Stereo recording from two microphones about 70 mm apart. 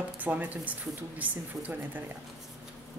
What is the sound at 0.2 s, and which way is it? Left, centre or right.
A woman's voice, right.